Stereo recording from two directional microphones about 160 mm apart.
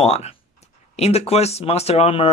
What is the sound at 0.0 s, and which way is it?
Speech, 40° left (ahead or behind).